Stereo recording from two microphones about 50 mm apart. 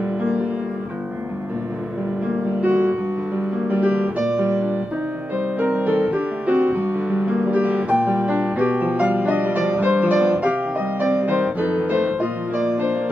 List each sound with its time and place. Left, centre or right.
2.6 s music: right